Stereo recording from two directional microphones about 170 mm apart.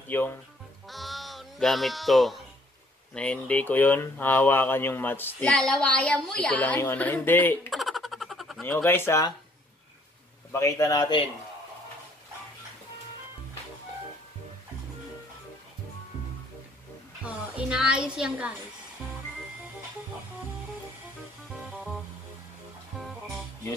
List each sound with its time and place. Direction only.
0.1 s speech: 10° left (ahead or behind)
0.8 s music: centre (ahead or behind)
3.2 s speech: 5° left (ahead or behind)
7.7 s a sound: centre (ahead or behind)
8.6 s speech: 15° left (ahead or behind)
10.5 s a man's voice: 20° left (ahead or behind)
17.2 s music: 5° right (ahead or behind)